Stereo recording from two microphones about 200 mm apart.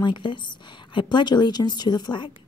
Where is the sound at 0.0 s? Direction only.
25° left (ahead or behind).